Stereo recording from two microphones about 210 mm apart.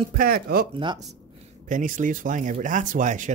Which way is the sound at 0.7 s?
25° right (ahead or behind).